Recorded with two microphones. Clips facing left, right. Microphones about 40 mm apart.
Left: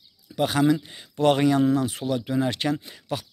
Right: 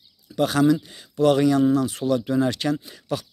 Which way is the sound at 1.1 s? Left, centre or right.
Left.